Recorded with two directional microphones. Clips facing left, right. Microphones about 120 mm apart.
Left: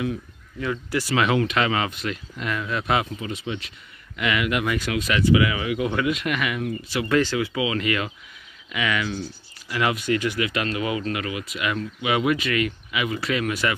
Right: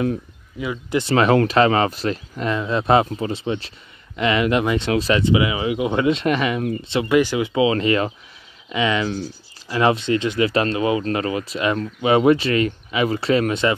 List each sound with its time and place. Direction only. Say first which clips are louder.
0.6 s speech: right 3 dB; 15° right (ahead or behind)
1.1 s speech: right 6 dB; 40° right (ahead or behind)
7.1 s speech: right 3 dB; 15° right (ahead or behind)